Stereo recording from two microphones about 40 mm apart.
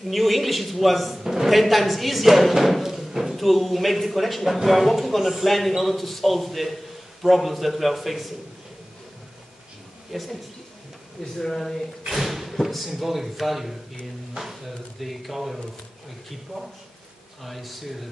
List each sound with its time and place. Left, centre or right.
0.1 s a woman's voice: centre
10.1 s a woman's voice: centre
11.3 s speech: centre
12.1 s a sound: centre
12.6 s a woman's voice: centre
17.4 s a woman's voice: centre